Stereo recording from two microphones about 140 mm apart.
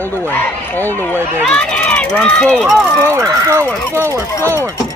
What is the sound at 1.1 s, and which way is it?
Speech, 10° left (ahead or behind).